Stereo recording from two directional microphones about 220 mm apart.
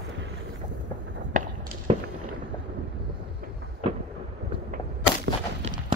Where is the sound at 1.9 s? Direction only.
25° right (ahead or behind).